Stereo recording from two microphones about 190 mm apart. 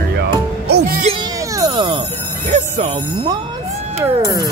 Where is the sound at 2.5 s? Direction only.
30° right (ahead or behind).